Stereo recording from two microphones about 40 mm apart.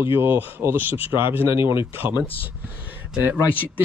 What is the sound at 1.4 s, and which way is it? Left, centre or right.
Speech, right.